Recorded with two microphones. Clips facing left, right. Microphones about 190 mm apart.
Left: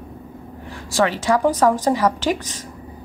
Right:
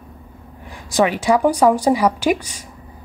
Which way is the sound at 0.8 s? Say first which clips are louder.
Right 2 dB; 15° right (ahead or behind).